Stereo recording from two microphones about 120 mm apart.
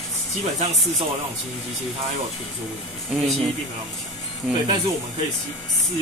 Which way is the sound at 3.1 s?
10° right (ahead or behind).